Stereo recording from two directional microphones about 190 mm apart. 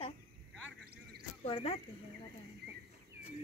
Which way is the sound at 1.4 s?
30° left (ahead or behind).